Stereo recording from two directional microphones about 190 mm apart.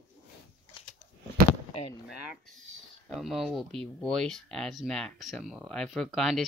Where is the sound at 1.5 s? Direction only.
30° left (ahead or behind).